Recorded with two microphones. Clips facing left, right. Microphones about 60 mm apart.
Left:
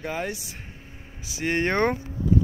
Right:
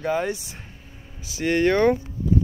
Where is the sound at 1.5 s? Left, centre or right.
Left.